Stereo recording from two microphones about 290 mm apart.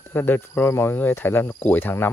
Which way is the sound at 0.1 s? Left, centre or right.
Centre.